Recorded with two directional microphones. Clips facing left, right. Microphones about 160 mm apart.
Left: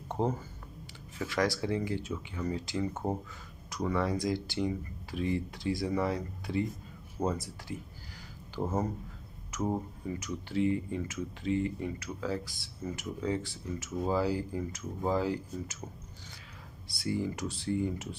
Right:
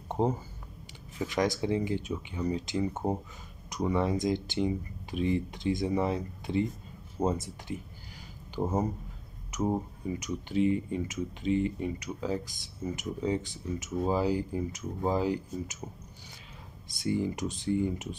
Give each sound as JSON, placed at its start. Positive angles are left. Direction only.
{"t": 0.2, "sound": "speech", "side_deg": -20}
{"t": 16.9, "sound": "speech", "side_deg": -20}